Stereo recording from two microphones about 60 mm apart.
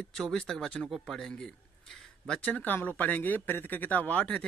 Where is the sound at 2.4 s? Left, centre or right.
Left.